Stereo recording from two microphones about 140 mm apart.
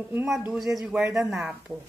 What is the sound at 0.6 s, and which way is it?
A woman's voice, centre (ahead or behind).